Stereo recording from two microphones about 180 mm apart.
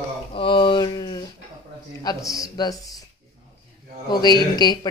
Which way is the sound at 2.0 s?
20° left (ahead or behind).